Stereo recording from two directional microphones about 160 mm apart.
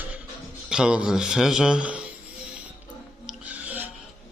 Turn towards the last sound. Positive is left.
turn(degrees=-10)  # may be behind; listen again after turning